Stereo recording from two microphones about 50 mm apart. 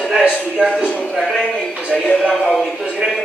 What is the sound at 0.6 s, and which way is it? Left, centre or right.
Speech, centre.